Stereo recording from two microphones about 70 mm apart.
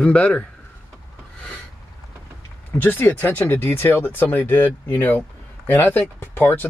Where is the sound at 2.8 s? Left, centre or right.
Left.